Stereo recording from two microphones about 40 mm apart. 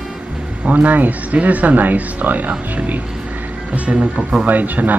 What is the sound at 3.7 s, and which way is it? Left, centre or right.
Speech, right.